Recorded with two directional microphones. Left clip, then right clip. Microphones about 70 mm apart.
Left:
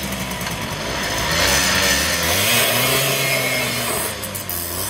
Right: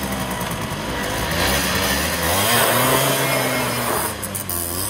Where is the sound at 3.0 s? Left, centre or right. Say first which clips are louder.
Even; right.